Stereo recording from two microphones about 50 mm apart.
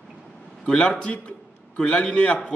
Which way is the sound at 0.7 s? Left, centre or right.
Left.